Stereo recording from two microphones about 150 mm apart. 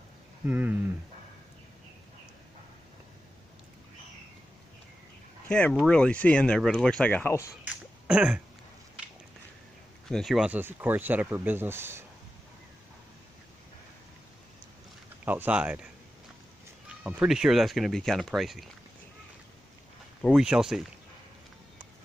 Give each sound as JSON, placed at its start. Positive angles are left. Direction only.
{"t": 0.5, "sound": "speech", "side_deg": -10}
{"t": 5.5, "sound": "speech", "side_deg": 5}
{"t": 7.6, "sound": "a sound", "side_deg": -5}
{"t": 10.0, "sound": "speech", "side_deg": 0}
{"t": 15.2, "sound": "speech", "side_deg": -10}
{"t": 17.0, "sound": "speech", "side_deg": -5}
{"t": 20.3, "sound": "speech", "side_deg": -5}